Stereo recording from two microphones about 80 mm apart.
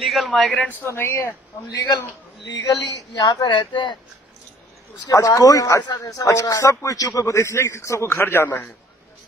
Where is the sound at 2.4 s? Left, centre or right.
Left.